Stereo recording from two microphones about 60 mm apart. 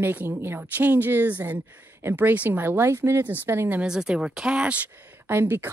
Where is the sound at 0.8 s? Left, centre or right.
Right.